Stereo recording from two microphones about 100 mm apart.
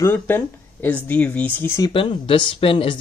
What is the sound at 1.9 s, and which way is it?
Speech, 60° left (ahead or behind).